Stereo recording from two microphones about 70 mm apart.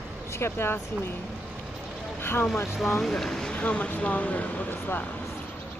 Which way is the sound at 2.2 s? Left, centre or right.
Left.